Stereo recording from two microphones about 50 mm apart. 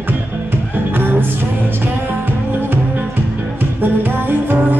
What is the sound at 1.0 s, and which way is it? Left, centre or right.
Music, right.